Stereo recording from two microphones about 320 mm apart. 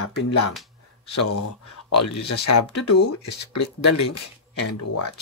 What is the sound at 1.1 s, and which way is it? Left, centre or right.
Speech, left.